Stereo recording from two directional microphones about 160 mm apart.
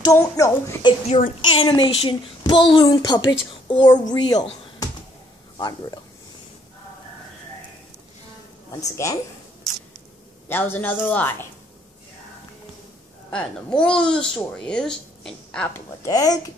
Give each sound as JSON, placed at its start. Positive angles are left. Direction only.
{"t": 0.0, "sound": "a child's voice", "side_deg": 20}
{"t": 1.0, "sound": "a child's voice", "side_deg": 45}
{"t": 8.8, "sound": "a child's voice", "side_deg": 20}
{"t": 10.5, "sound": "a man's voice", "side_deg": 10}
{"t": 13.3, "sound": "speech", "side_deg": 5}
{"t": 16.0, "sound": "a child's voice", "side_deg": 20}